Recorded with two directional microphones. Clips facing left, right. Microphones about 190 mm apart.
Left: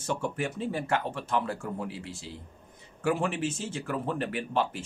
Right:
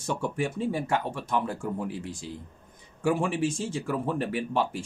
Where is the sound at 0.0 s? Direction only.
10° right (ahead or behind).